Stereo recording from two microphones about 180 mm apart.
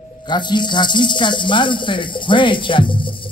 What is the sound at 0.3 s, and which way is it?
Speech, 25° left (ahead or behind).